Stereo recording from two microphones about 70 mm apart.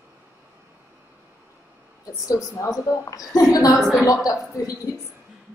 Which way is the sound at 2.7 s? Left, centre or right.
Left.